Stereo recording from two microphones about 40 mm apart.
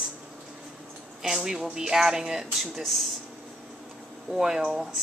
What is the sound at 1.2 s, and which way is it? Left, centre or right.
Speech, centre.